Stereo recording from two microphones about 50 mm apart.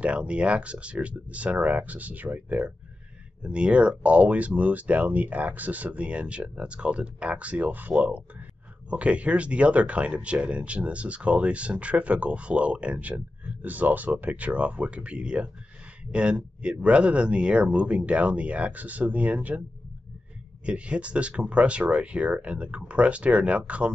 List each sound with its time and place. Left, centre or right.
0.0 s speech: right
13.6 s speech: right
20.6 s speech: right